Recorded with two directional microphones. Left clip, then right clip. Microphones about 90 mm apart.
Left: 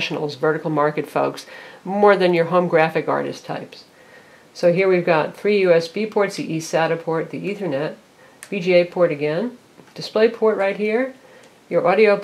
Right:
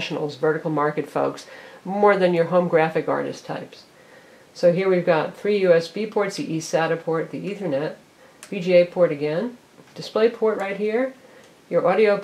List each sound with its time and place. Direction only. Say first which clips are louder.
0.0 s speech: left 2 dB; 30° left (ahead or behind)